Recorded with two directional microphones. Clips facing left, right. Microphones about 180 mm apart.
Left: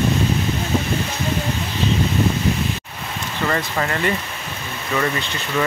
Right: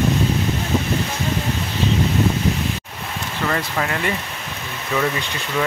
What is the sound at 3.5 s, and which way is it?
Speech, centre (ahead or behind).